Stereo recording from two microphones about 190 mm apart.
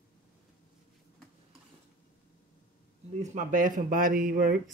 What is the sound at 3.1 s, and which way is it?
Speech, 40° right (ahead or behind).